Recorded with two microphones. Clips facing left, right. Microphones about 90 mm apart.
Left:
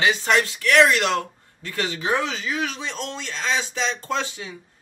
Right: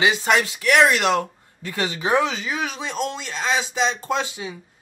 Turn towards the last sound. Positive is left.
turn(degrees=-15)  # may be behind; listen again after turning